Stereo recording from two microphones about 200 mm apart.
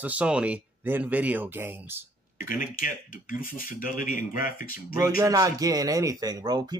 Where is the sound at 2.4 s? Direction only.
45° left (ahead or behind).